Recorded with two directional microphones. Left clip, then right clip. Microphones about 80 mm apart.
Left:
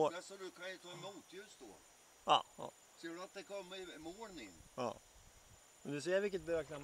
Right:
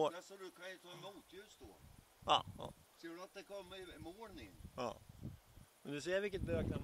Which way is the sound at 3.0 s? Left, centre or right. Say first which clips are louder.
Left 3 dB; centre.